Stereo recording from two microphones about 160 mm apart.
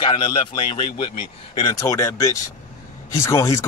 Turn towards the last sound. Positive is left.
turn(degrees=20)  # may be behind; listen again after turning